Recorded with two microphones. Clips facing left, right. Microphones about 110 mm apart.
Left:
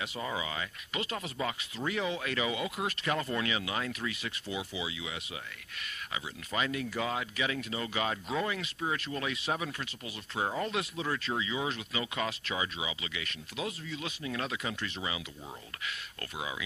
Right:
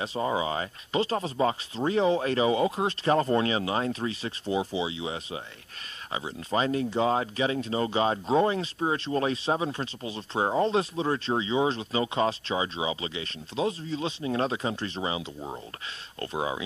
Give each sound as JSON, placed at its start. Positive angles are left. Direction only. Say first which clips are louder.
{"t": 0.0, "sound": "speech", "louder": "right 8 dB", "side_deg": -30}